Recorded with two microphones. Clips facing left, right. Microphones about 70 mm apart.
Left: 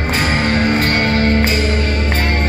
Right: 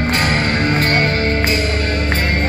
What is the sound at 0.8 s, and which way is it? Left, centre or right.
Music, right.